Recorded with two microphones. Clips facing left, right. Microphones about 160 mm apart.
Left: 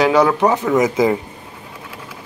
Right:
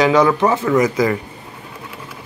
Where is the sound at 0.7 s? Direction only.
20° left (ahead or behind).